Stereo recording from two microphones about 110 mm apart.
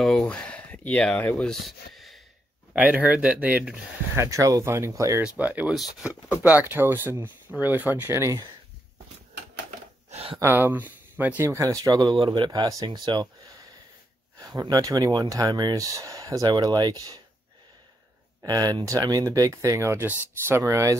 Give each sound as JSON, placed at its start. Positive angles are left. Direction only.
{"t": 0.0, "sound": "a sound", "side_deg": 5}
{"t": 1.3, "sound": "speech", "side_deg": 0}
{"t": 2.7, "sound": "speech", "side_deg": -15}
{"t": 4.2, "sound": "speech", "side_deg": -30}
{"t": 5.2, "sound": "speech", "side_deg": -15}
{"t": 6.4, "sound": "speech", "side_deg": -15}
{"t": 10.1, "sound": "a sound", "side_deg": -60}
{"t": 10.4, "sound": "speech", "side_deg": -20}
{"t": 11.4, "sound": "speech", "side_deg": -30}
{"t": 18.4, "sound": "speech", "side_deg": -35}